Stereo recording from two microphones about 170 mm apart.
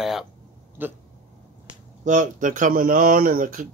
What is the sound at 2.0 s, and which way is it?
Speech, 50° right (ahead or behind).